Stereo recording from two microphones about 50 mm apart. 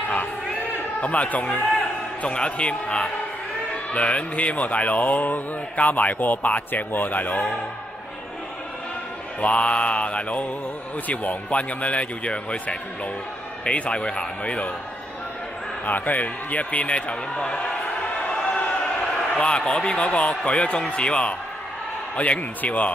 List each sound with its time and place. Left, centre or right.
1.0 s a man's voice: left
9.4 s a man's voice: left
15.8 s a man's voice: left